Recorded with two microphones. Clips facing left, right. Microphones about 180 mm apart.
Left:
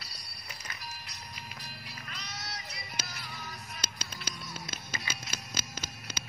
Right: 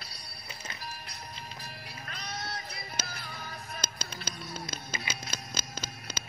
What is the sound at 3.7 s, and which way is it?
Music, 45° right (ahead or behind).